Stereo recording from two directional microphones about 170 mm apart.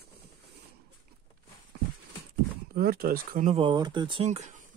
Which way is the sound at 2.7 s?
60° right (ahead or behind).